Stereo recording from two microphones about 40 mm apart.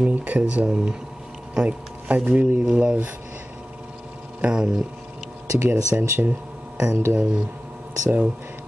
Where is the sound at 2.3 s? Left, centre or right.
Right.